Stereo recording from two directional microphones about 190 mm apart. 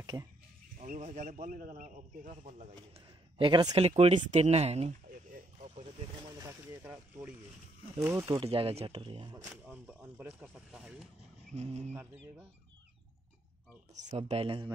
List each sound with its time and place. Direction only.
0.0 s a sound: 20° right (ahead or behind)
0.7 s speech: 40° right (ahead or behind)
3.3 s speech: 25° right (ahead or behind)
6.3 s speech: 15° right (ahead or behind)
8.3 s speech: 25° right (ahead or behind)
9.5 s speech: 5° right (ahead or behind)
11.5 s speech: 35° right (ahead or behind)
14.1 s speech: 30° right (ahead or behind)